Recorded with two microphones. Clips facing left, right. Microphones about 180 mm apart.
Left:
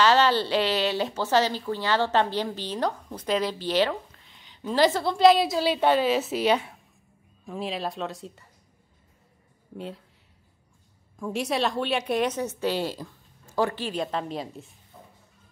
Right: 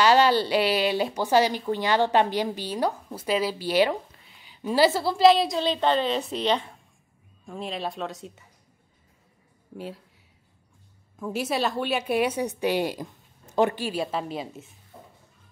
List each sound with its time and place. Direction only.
0.0 s speech: 10° right (ahead or behind)
11.1 s speech: 5° right (ahead or behind)
14.9 s a sound: 30° right (ahead or behind)